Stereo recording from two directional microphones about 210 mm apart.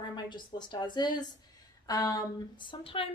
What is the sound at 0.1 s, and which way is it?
A woman's voice, 20° left (ahead or behind).